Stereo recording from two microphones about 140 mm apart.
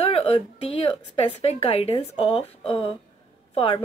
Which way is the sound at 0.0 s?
45° left (ahead or behind).